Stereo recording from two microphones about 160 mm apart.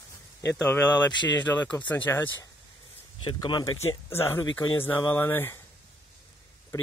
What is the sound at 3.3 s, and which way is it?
Speech, 30° left (ahead or behind).